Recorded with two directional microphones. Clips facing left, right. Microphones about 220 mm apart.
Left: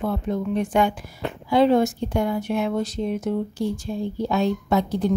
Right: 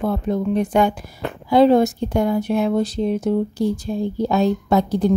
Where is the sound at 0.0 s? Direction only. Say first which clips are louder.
Right 4 dB; 40° right (ahead or behind).